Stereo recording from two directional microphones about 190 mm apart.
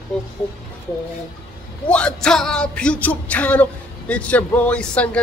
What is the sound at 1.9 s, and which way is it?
A man's voice, 5° left (ahead or behind).